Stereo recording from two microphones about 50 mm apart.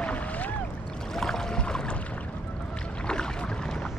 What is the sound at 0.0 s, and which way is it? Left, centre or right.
Boat, left.